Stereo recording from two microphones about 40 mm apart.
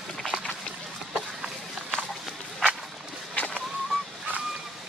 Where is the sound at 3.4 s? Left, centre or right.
Left.